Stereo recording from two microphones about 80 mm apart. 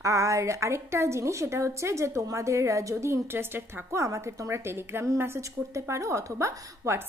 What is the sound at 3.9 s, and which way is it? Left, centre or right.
Speech, right.